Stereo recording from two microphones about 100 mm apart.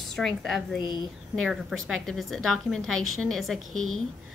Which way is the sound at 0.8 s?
50° left (ahead or behind).